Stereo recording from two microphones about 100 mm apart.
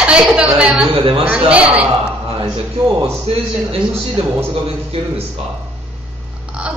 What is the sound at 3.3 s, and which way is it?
Speech, 90° right.